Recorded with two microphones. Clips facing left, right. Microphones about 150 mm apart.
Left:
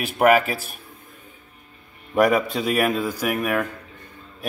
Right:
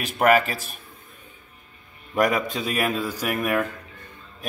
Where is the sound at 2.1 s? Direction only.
10° left (ahead or behind).